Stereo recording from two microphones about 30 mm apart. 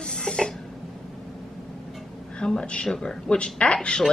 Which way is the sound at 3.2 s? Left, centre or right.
Left.